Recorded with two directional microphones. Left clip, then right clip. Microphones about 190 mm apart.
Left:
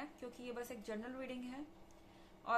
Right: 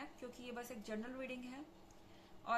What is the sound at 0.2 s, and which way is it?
A woman's voice, 20° left (ahead or behind).